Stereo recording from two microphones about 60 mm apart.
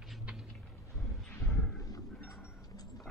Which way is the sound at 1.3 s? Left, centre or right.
Left.